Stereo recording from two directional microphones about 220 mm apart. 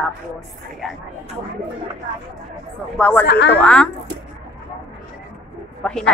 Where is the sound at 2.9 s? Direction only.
5° left (ahead or behind).